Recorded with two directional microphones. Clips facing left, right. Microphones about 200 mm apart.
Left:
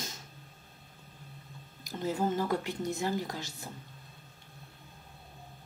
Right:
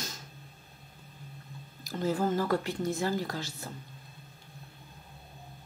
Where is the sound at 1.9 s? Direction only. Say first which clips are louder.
Right 2 dB; 20° left (ahead or behind).